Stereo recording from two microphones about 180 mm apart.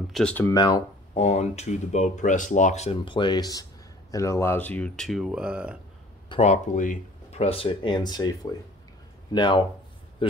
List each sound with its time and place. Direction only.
0.1 s speech: 5° left (ahead or behind)
0.6 s speech: 25° left (ahead or behind)
1.1 s speech: 40° left (ahead or behind); by 5.8 s 5° right (ahead or behind)
6.4 s speech: 40° left (ahead or behind); by 9.7 s 25° left (ahead or behind)